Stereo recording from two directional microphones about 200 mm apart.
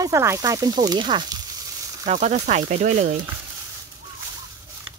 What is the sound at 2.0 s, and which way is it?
Speech, 35° right (ahead or behind).